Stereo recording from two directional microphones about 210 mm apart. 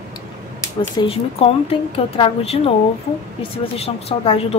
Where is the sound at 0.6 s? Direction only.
25° left (ahead or behind).